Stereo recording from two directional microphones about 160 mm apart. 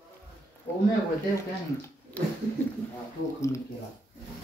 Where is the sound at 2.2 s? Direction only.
10° left (ahead or behind).